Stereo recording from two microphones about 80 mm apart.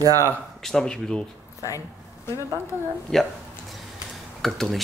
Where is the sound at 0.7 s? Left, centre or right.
Centre.